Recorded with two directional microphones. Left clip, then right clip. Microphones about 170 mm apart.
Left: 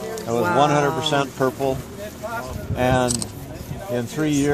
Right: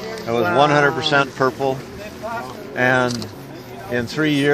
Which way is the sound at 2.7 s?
20° right (ahead or behind).